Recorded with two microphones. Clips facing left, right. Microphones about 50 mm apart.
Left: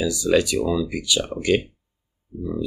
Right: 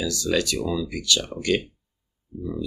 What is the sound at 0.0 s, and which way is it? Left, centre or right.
Speech, centre.